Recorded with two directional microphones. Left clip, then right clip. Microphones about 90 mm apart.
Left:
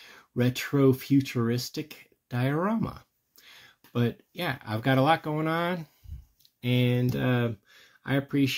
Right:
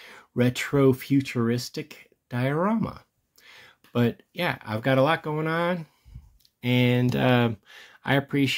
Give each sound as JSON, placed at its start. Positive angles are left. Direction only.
{"t": 0.0, "sound": "speech", "side_deg": -35}
{"t": 3.9, "sound": "speech", "side_deg": -35}
{"t": 4.6, "sound": "speech", "side_deg": -10}
{"t": 7.0, "sound": "speech", "side_deg": -80}
{"t": 8.3, "sound": "speech", "side_deg": -35}